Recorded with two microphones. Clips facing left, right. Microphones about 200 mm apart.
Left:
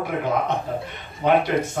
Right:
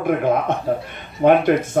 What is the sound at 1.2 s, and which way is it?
Speech, 50° right (ahead or behind).